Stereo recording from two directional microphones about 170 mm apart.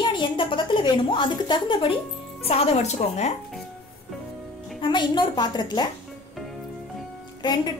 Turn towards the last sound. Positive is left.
turn(degrees=25)  # may be behind; listen again after turning